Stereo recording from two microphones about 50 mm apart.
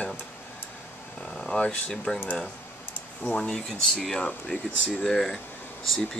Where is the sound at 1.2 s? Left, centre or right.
Centre.